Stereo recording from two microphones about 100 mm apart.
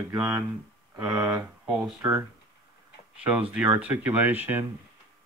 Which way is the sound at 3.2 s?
15° right (ahead or behind).